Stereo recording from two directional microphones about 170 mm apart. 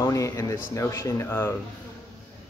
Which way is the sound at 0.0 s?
20° left (ahead or behind).